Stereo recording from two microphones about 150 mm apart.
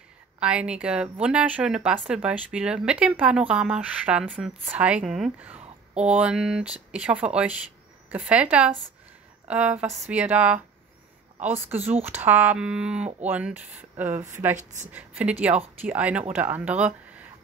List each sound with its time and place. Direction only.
0.4 s a woman's voice: 10° right (ahead or behind)
14.6 s a woman's voice: 50° right (ahead or behind)
14.9 s a woman's voice: 10° right (ahead or behind)